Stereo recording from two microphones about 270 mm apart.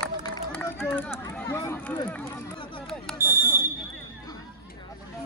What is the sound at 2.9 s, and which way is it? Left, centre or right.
Smoke detector, centre.